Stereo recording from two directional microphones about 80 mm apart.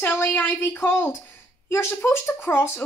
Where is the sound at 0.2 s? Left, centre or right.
Left.